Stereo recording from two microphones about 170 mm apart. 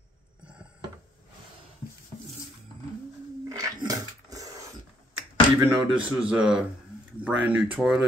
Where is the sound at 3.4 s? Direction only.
20° right (ahead or behind).